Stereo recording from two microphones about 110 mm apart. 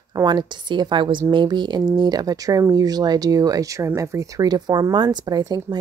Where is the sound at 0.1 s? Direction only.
40° right (ahead or behind).